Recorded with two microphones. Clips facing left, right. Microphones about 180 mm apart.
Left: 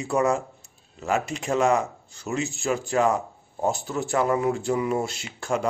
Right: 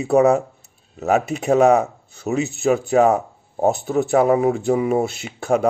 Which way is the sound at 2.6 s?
60° right (ahead or behind).